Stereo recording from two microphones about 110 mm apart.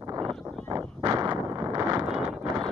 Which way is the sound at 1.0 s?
40° right (ahead or behind).